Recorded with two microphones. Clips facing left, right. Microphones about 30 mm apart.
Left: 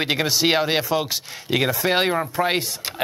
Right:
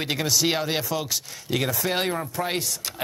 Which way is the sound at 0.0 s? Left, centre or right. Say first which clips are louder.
Left 4 dB; left.